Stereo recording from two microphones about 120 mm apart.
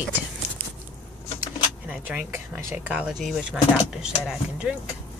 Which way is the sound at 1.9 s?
10° right (ahead or behind).